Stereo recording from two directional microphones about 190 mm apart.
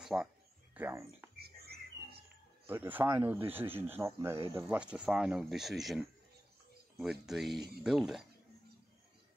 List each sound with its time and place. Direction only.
0.0 s speech: 5° right (ahead or behind)
1.3 s music: 55° right (ahead or behind)
2.6 s speech: 10° right (ahead or behind)